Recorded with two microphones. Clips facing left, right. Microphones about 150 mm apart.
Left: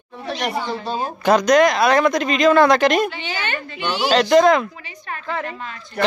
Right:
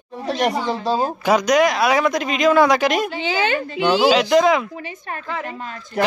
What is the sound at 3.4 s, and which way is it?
Speech, 90° right.